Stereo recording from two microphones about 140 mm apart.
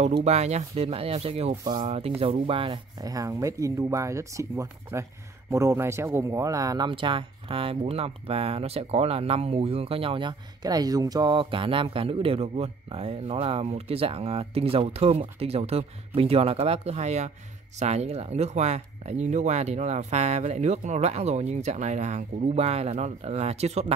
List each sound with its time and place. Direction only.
0.0 s speech: 50° right (ahead or behind)
1.6 s speech: 35° right (ahead or behind)
1.9 s speech: 45° right (ahead or behind)
3.0 s speech: 25° right (ahead or behind)
6.9 s speech: 35° right (ahead or behind)